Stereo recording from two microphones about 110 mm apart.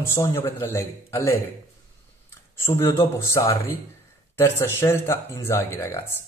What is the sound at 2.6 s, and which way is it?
Speech, 25° left (ahead or behind).